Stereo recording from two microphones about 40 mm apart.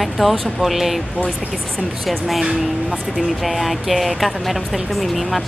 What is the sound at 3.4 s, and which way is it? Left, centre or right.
Speech, centre.